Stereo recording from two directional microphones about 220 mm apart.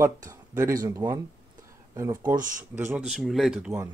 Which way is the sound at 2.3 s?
35° right (ahead or behind).